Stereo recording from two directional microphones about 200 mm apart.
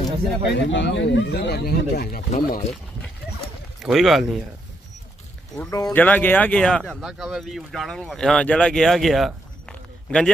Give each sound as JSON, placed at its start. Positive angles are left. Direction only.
{"t": 0.5, "sound": "speech", "side_deg": 60}
{"t": 3.8, "sound": "speech", "side_deg": 0}
{"t": 5.6, "sound": "speech", "side_deg": 15}